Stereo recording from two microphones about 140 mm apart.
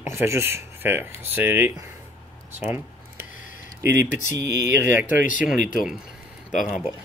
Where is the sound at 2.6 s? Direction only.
10° right (ahead or behind).